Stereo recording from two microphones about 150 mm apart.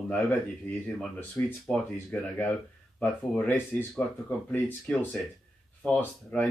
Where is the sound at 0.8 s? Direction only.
5° left (ahead or behind).